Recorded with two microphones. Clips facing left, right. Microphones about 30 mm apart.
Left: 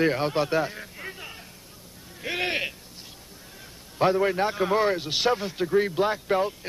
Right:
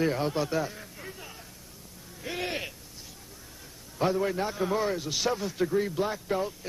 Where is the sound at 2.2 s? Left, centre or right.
Left.